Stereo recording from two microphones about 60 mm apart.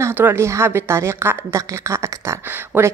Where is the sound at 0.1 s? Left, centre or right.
Right.